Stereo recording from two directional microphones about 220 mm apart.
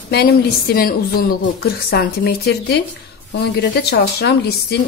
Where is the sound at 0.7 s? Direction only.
40° left (ahead or behind).